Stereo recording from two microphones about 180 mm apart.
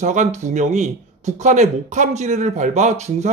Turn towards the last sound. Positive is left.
turn(degrees=-40)  # may be behind; listen again after turning